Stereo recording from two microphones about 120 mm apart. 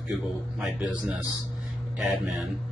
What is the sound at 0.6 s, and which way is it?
Speech, 5° right (ahead or behind).